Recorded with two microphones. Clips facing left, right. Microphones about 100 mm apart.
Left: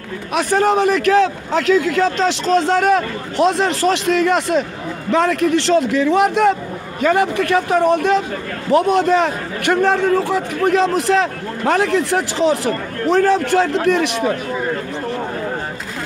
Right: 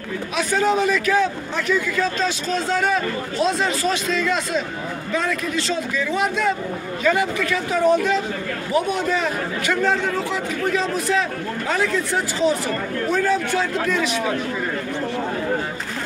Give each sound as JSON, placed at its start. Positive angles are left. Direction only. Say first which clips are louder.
{"t": 0.3, "sound": "a man's voice", "louder": "left 5 dB", "side_deg": 60}
{"t": 7.0, "sound": "a man's voice", "louder": "left 5 dB", "side_deg": 55}